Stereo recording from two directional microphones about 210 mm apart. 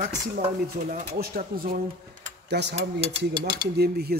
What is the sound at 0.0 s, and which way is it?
A man's voice, 35° right (ahead or behind).